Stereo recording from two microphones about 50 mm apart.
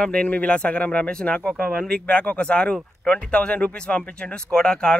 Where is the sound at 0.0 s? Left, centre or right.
Centre.